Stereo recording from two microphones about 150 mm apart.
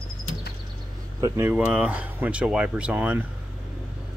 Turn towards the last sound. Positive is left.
turn(degrees=-10)  # may be behind; listen again after turning